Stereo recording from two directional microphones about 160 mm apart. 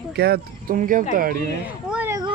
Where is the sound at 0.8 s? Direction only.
55° right (ahead or behind).